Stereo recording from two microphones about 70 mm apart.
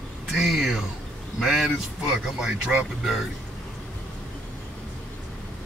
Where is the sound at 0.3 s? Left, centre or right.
Centre.